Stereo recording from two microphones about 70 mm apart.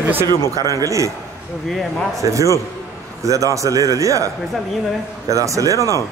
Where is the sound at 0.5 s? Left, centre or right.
Right.